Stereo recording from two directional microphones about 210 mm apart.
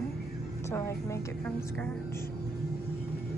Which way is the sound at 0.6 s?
15° left (ahead or behind).